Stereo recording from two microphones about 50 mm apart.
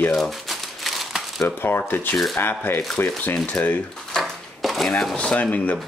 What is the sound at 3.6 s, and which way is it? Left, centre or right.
Speech, left.